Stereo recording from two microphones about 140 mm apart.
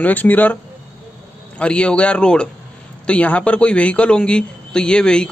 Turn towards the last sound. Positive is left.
turn(degrees=5)  # may be behind; listen again after turning